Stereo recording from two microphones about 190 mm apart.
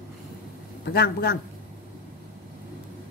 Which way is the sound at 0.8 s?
60° left (ahead or behind).